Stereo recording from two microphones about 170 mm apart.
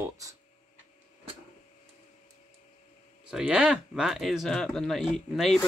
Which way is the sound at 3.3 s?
5° right (ahead or behind).